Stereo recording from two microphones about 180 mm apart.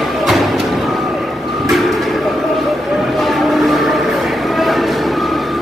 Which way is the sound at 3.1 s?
Centre (ahead or behind).